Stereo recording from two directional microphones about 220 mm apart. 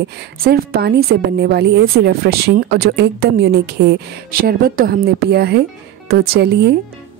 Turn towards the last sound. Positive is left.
turn(degrees=-50)  # may be behind; listen again after turning